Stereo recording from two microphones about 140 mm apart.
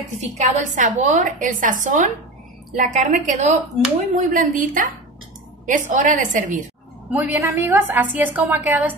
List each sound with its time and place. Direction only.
0.4 s a woman's voice: 60° right (ahead or behind)
7.1 s a woman's voice: 10° right (ahead or behind)